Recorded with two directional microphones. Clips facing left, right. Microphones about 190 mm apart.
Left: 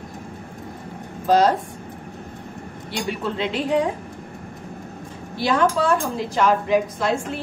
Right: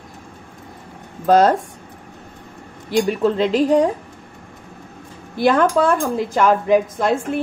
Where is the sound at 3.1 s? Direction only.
40° right (ahead or behind).